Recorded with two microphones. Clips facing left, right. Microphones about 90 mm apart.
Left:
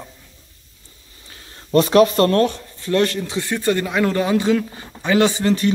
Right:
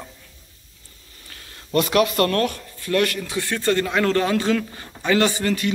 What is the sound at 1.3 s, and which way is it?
Speech, 30° left (ahead or behind).